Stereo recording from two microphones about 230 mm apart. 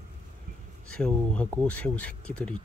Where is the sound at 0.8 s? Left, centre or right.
Centre.